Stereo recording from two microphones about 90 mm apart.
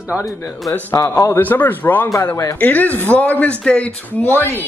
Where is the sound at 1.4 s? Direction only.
20° left (ahead or behind).